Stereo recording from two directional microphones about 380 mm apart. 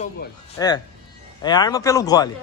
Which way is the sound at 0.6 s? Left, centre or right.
Centre.